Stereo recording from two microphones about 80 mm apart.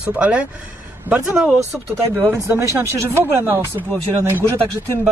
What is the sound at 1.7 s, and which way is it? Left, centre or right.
Speech, centre.